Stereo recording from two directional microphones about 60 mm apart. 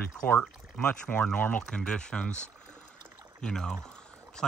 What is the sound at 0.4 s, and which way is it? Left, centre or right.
Speech, left.